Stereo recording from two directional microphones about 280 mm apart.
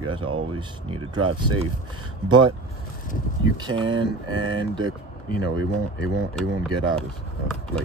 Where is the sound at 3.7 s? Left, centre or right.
Right.